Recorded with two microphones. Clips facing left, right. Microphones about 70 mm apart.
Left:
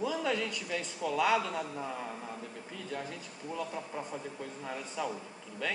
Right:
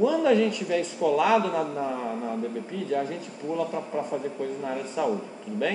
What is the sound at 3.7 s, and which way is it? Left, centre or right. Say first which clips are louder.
Speech: right 10 dB; right.